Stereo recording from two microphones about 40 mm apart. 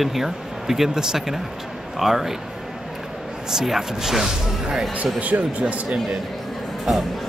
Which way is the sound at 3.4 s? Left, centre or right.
Centre.